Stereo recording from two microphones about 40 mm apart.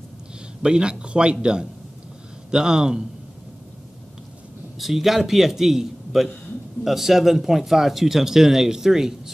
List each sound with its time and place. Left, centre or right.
0.6 s a man's voice: right
4.7 s a man's voice: centre